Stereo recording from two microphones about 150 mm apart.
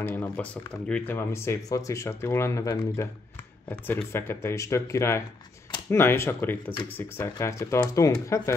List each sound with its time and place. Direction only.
0.0 s speech: 15° left (ahead or behind)